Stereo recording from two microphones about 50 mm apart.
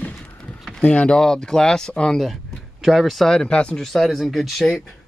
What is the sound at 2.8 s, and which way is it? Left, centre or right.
Speech, centre.